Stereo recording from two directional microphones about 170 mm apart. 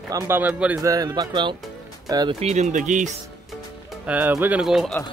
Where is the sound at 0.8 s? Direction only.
20° right (ahead or behind).